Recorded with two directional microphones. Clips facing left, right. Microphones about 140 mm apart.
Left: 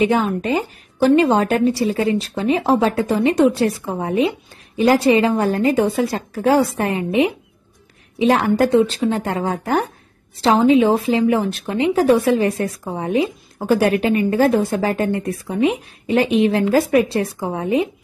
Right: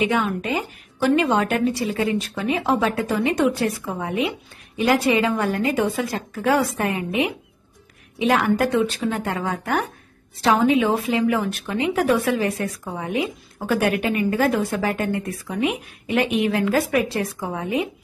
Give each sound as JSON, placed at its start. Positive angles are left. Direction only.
{"t": 0.0, "sound": "a woman's voice", "side_deg": 35}